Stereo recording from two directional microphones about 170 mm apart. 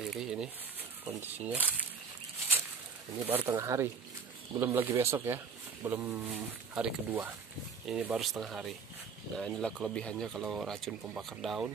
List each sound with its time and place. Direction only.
0.0 s speech: 5° right (ahead or behind)
3.2 s speech: 15° right (ahead or behind)